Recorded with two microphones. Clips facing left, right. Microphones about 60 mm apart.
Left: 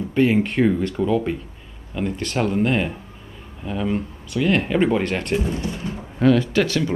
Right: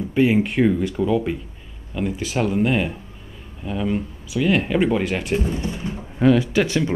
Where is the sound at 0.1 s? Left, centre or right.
Centre.